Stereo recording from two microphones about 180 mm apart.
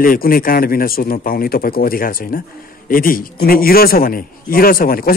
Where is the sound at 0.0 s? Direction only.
55° left (ahead or behind).